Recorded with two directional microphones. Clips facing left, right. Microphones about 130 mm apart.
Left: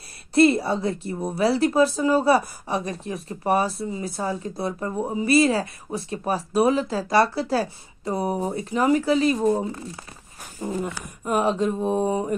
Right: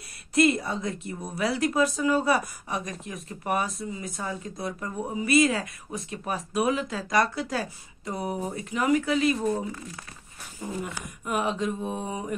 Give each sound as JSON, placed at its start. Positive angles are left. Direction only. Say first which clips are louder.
{"t": 0.3, "sound": "a woman's voice", "louder": "left 5 dB", "side_deg": 30}